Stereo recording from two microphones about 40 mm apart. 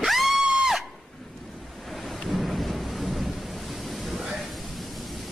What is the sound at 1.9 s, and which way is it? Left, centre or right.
Ocean, centre.